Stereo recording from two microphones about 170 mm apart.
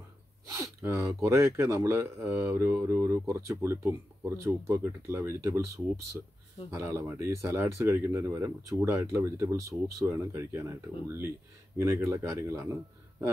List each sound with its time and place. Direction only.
0.5 s speech: 15° right (ahead or behind)
6.7 s speech: 15° right (ahead or behind)